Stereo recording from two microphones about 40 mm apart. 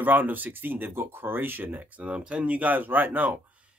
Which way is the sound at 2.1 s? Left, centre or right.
Right.